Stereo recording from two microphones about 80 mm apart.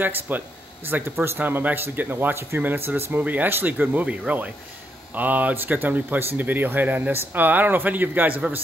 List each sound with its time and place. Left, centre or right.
0.0 s speech: right